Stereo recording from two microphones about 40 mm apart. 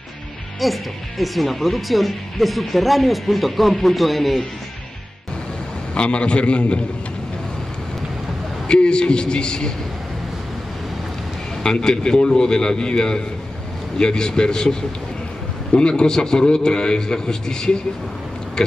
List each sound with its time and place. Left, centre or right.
0.6 s speech: centre
5.9 s a man's voice: left
8.6 s a man's voice: left
11.6 s a man's voice: centre